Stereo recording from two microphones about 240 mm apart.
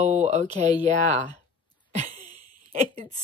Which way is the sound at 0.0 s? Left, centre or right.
Right.